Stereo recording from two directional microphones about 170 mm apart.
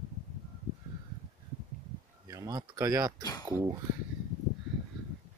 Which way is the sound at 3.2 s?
20° left (ahead or behind).